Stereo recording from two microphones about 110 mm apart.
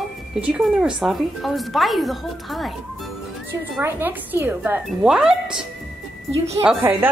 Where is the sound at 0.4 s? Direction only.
5° right (ahead or behind).